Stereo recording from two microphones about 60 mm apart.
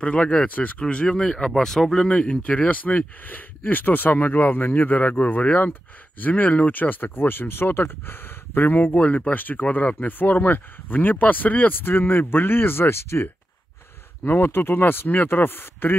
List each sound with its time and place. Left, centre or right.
0.0 s speech: centre
2.0 s speech: centre; by 16.0 s left